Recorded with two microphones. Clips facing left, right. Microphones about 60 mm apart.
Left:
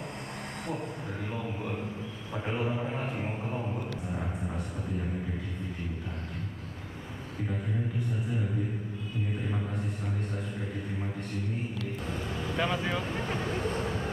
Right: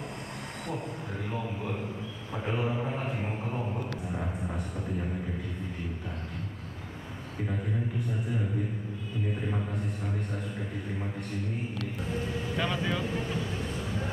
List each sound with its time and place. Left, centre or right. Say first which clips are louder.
2.3 s a man's voice: right 1 dB; centre
4.1 s a sound: right 1 dB; centre
12.5 s speech: left 1 dB; centre
13.2 s speech: left 2 dB; left